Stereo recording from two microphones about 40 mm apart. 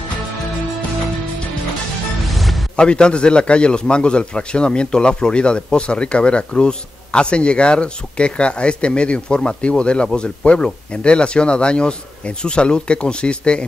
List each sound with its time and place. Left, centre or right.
2.2 s music: centre
2.7 s speech: left